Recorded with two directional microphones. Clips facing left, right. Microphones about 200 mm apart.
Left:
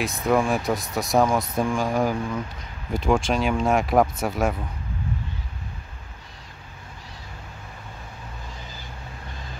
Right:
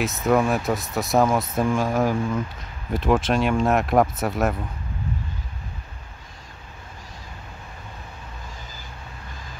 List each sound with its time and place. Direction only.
0.0 s speech: centre (ahead or behind)